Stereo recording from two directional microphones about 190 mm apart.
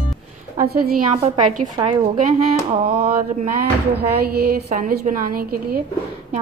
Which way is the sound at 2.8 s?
50° right (ahead or behind).